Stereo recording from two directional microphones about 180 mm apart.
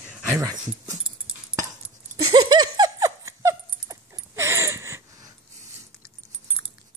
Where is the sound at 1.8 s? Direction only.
25° right (ahead or behind).